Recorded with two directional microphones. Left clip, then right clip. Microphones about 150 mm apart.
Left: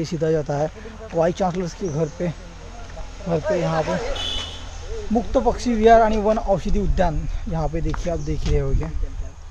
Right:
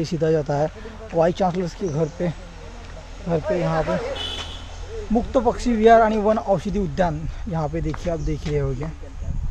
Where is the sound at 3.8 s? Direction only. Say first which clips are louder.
Even; 90° left.